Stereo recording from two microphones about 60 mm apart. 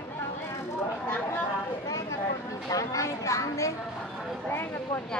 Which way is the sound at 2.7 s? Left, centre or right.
Left.